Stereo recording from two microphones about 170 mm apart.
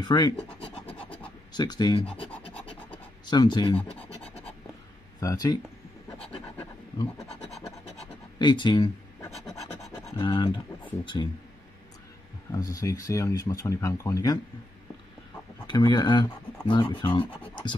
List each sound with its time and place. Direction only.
0.0 s speech: 25° left (ahead or behind)
0.9 s scratch: 30° left (ahead or behind)
3.3 s speech: 25° left (ahead or behind)
5.2 s speech: 20° left (ahead or behind)
8.4 s speech: 25° left (ahead or behind)
9.3 s scratch: centre (ahead or behind)
10.1 s speech: 30° left (ahead or behind)
12.4 s speech: 20° left (ahead or behind)
15.6 s speech: 25° left (ahead or behind)